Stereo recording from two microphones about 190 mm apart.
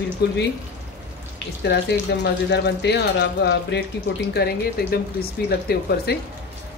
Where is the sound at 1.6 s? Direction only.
65° left (ahead or behind).